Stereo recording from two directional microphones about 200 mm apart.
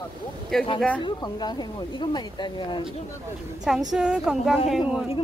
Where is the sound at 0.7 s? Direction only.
5° left (ahead or behind).